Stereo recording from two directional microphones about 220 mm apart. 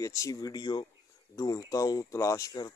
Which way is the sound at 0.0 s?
15° left (ahead or behind).